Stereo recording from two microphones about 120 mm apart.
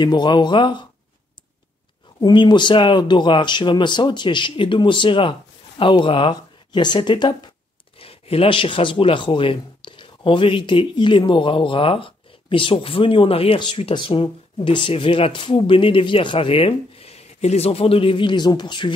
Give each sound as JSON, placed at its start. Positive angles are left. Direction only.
{"t": 0.0, "sound": "speech", "side_deg": 35}
{"t": 2.1, "sound": "speech", "side_deg": 40}
{"t": 8.0, "sound": "speech", "side_deg": 50}